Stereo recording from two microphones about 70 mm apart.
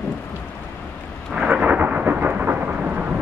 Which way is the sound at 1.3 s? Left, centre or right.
Centre.